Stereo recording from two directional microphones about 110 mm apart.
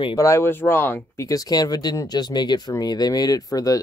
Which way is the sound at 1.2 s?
35° left (ahead or behind).